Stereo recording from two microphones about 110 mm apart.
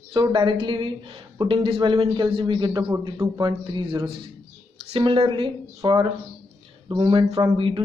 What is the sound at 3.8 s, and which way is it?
A man's voice, 50° right (ahead or behind).